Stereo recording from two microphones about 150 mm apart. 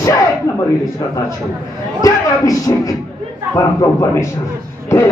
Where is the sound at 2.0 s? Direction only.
25° left (ahead or behind).